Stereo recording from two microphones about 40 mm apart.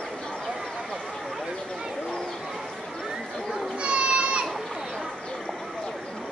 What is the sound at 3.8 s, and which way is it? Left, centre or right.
Children playing, right.